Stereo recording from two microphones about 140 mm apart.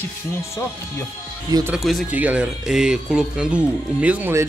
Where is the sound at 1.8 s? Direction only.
Centre (ahead or behind).